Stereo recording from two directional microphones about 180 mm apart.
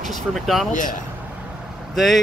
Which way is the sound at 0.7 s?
45° left (ahead or behind).